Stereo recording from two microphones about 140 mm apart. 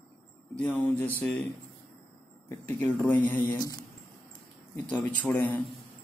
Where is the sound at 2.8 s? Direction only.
5° left (ahead or behind).